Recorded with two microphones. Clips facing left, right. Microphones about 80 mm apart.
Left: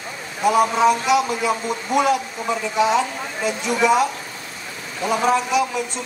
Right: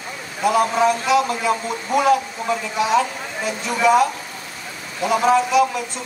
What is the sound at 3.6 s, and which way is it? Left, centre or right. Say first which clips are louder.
A man's voice: right 2 dB; centre.